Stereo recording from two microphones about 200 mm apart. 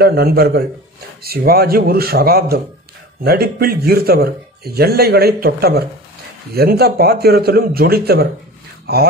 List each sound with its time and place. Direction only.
0.0 s a man's voice: 50° right (ahead or behind)